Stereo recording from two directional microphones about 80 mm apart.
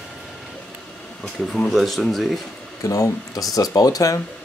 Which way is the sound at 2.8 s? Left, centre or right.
Left.